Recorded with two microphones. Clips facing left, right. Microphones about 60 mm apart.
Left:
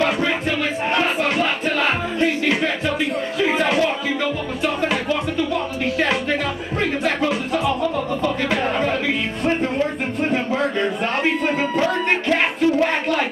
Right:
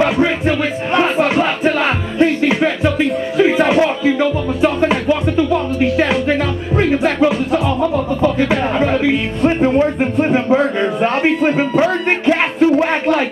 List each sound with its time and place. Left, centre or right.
0.9 s music: centre
2.1 s speech: centre
3.3 s music: centre
10.2 s a sound: right
11.7 s music: right